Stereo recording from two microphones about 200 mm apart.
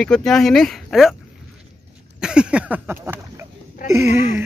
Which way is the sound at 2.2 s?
5° right (ahead or behind).